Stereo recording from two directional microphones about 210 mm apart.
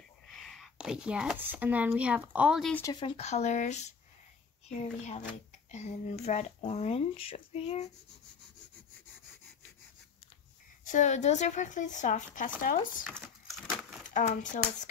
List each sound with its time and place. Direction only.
0.3 s speech: centre (ahead or behind)
2.7 s speech: 15° left (ahead or behind)
10.9 s speech: 35° left (ahead or behind)
13.1 s a sound: centre (ahead or behind)
14.1 s speech: 35° left (ahead or behind)